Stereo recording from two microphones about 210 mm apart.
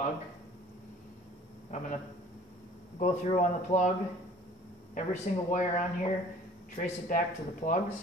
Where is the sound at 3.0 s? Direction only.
35° left (ahead or behind).